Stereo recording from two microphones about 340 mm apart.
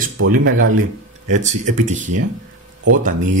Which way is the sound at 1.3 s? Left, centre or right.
Right.